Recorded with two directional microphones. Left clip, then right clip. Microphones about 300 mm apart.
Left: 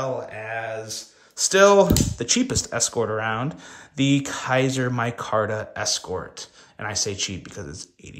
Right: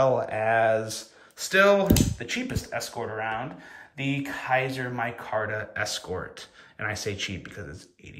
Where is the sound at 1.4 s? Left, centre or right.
Centre.